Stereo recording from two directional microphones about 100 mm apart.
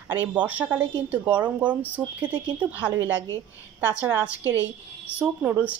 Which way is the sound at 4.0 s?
15° right (ahead or behind).